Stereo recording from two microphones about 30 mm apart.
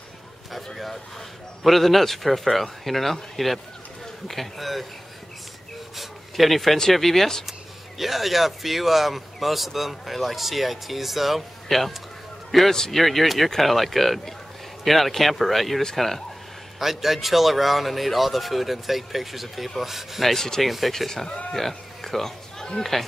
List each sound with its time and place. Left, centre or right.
1.6 s speech: centre
5.9 s a sound: centre
6.9 s speech: centre
8.0 s a man's voice: centre
16.8 s speech: centre
20.3 s speech: centre
20.6 s speech: centre
21.5 s a sound: centre
22.8 s speech: centre